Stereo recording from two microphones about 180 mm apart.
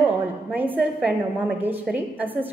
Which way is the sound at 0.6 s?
10° right (ahead or behind).